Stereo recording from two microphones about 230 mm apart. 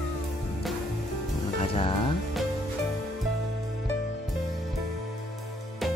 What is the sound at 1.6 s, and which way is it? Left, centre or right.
Music, left.